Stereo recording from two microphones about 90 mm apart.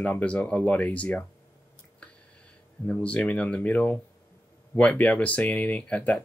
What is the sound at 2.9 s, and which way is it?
Speech, 15° left (ahead or behind).